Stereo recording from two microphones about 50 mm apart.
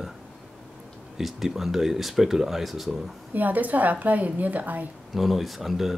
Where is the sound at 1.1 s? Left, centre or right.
Centre.